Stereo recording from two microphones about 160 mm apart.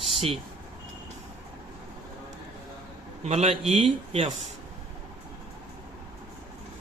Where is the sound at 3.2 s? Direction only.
45° right (ahead or behind).